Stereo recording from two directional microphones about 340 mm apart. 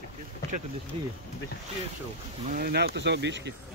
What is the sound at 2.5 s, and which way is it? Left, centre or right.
Speech, right.